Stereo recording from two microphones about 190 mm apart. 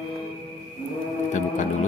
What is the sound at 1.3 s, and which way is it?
Music, 40° left (ahead or behind).